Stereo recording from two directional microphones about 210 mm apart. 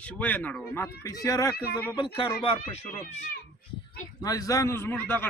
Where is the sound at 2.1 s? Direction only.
25° left (ahead or behind).